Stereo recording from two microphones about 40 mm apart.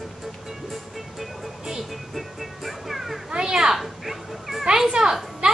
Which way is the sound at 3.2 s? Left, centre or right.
Right.